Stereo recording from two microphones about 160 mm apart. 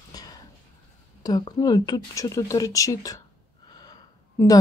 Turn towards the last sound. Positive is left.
turn(degrees=25)  # may be behind; listen again after turning